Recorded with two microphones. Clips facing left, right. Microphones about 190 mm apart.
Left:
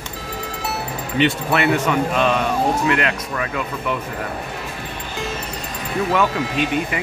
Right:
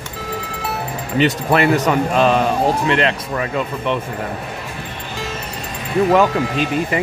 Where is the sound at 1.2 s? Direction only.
40° right (ahead or behind).